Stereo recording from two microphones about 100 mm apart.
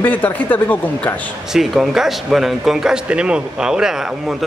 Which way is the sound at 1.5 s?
5° right (ahead or behind).